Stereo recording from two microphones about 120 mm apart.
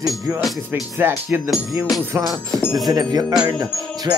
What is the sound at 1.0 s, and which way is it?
Music, 20° right (ahead or behind).